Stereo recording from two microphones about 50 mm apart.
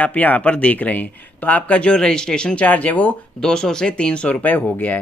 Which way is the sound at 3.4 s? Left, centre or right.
Centre.